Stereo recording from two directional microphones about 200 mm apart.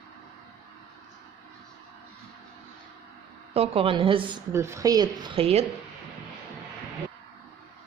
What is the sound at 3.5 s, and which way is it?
Speech, 30° right (ahead or behind).